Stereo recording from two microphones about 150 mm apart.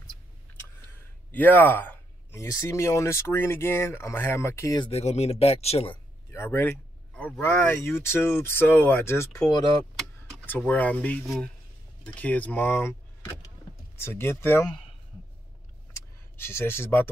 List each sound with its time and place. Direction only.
1.3 s speech: 10° left (ahead or behind)
4.7 s speech: 40° left (ahead or behind)
6.3 s speech: 15° left (ahead or behind)
13.9 s speech: 15° left (ahead or behind)
15.9 s a sound: 15° left (ahead or behind)